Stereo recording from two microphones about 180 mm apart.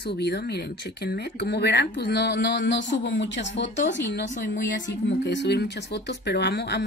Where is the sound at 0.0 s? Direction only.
65° left (ahead or behind).